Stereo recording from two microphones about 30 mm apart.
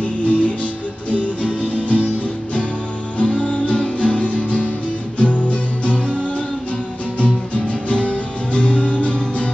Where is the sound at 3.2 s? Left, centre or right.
Left.